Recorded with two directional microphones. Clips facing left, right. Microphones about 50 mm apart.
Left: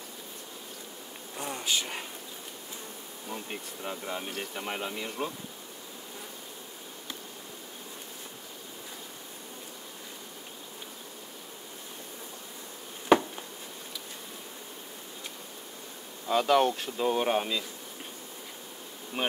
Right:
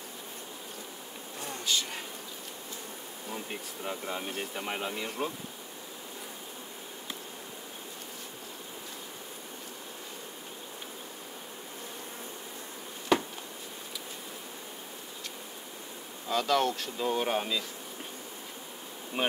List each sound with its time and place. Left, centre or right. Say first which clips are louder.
1.4 s insect: left 1 dB; centre
3.3 s speech: left 1 dB; centre
13.1 s a sound: left 5 dB; left
16.3 s speech: left 4 dB; centre
19.2 s bee: right 1 dB; centre